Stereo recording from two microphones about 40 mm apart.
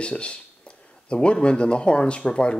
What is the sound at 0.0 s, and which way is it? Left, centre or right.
Speech, left.